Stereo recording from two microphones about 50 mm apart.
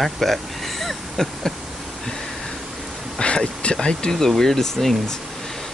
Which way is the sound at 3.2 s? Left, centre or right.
Centre.